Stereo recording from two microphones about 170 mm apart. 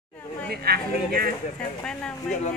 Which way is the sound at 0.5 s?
65° right (ahead or behind).